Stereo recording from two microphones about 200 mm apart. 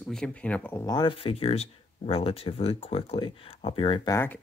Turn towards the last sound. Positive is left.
turn(degrees=25)  # may be behind; listen again after turning